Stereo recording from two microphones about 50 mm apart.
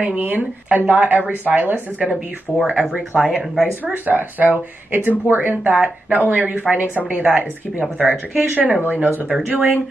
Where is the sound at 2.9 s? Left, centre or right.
Right.